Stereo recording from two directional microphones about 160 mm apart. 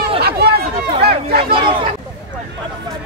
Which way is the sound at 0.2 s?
80° right.